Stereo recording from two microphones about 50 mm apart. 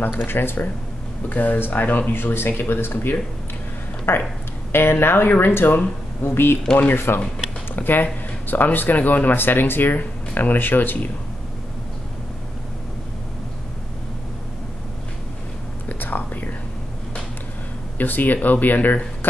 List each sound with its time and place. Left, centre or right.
0.3 s speech: left
1.3 s speech: left
7.7 s speech: left
15.9 s whispering: left
17.9 s speech: left